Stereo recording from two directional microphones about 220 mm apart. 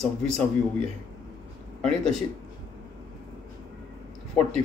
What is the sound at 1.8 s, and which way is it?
Speech, 5° left (ahead or behind).